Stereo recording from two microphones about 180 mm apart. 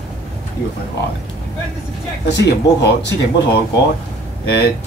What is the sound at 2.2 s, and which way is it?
Speech, 70° left (ahead or behind).